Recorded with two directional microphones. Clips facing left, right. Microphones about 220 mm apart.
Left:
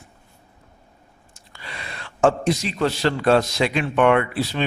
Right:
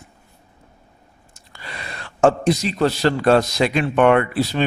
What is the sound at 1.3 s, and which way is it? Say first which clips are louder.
Speech: right 2 dB; 40° right (ahead or behind).